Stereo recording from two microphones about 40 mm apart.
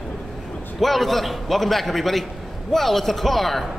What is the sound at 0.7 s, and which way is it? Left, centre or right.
A man's voice, centre.